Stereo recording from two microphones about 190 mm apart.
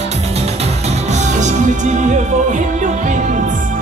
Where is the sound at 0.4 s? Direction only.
35° right (ahead or behind).